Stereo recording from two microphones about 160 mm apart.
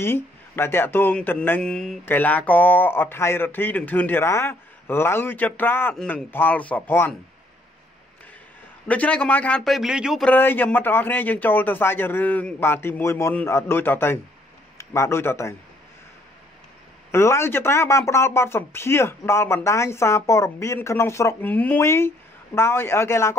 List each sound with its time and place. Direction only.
0.0 s speech: 15° left (ahead or behind)
8.8 s speech: 10° left (ahead or behind)
10.2 s speech: 10° left (ahead or behind)
17.1 s speech: 15° left (ahead or behind)